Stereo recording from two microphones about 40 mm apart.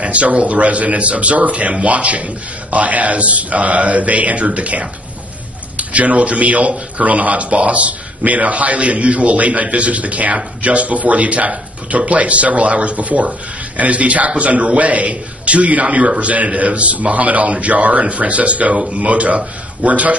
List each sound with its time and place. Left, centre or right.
0.0 s a man's voice: right
5.9 s a man's voice: right